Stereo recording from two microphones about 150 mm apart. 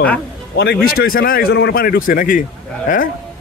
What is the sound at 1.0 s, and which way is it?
Speech, 75° left (ahead or behind).